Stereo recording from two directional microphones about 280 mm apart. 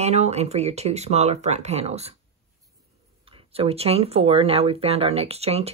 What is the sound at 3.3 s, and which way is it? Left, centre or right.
Speech, right.